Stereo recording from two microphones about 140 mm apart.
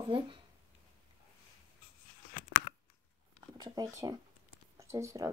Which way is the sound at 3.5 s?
25° right (ahead or behind).